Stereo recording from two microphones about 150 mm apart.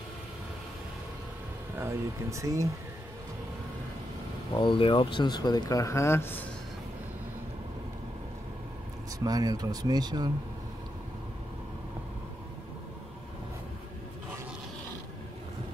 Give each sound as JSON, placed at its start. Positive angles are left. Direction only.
{"t": 1.8, "sound": "speech", "side_deg": -20}
{"t": 4.6, "sound": "speech", "side_deg": 35}
{"t": 9.2, "sound": "speech", "side_deg": -25}